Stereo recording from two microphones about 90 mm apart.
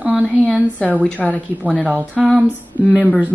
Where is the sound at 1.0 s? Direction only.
15° left (ahead or behind).